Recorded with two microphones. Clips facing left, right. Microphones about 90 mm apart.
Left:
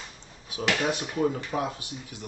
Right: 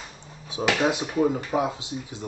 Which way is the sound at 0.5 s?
25° right (ahead or behind).